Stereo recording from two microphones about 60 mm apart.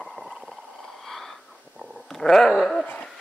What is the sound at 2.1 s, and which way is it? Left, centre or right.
Dog, centre.